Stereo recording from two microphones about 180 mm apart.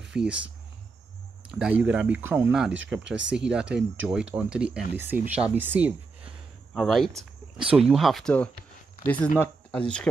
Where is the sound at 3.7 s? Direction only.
75° right (ahead or behind).